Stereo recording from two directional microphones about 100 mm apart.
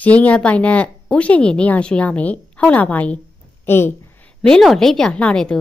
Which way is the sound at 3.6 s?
25° left (ahead or behind).